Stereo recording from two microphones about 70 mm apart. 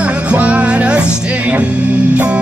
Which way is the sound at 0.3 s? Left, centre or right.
Centre.